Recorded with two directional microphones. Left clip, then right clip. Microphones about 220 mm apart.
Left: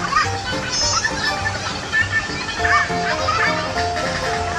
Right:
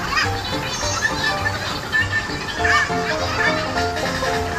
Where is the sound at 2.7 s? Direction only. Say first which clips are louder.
Left 1 dB; 20° left (ahead or behind).